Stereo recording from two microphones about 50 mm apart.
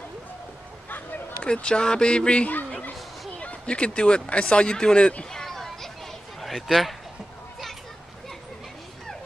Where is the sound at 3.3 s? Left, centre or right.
Left; by 6.5 s centre.